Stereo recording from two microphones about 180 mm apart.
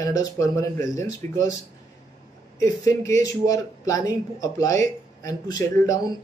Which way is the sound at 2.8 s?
15° left (ahead or behind).